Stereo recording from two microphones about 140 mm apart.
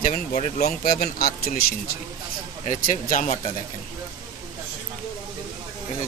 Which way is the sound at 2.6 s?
70° left (ahead or behind).